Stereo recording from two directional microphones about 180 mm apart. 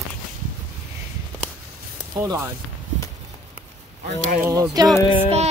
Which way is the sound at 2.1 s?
15° right (ahead or behind).